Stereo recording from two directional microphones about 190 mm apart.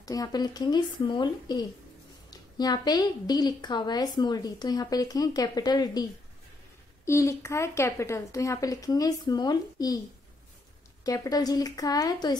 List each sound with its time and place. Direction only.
0.0 s a woman's voice: 20° left (ahead or behind)
7.1 s a woman's voice: 15° left (ahead or behind)
11.1 s a woman's voice: 20° left (ahead or behind)